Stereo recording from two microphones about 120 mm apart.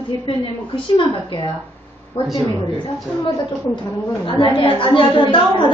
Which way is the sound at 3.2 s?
40° left (ahead or behind).